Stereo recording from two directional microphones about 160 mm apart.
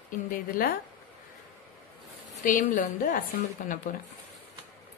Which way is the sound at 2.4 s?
55° left (ahead or behind).